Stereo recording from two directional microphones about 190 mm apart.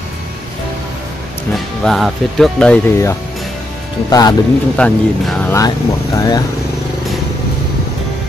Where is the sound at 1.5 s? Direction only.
Centre (ahead or behind).